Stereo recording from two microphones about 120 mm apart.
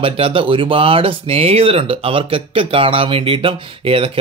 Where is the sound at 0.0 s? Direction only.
50° right (ahead or behind).